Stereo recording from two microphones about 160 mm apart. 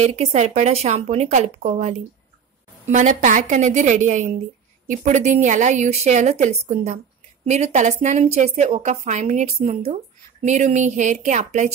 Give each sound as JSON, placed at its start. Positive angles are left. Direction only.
{"t": 0.0, "sound": "a woman's voice", "side_deg": -45}